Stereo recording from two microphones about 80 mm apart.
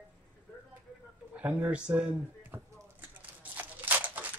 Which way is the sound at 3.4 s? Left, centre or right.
Right.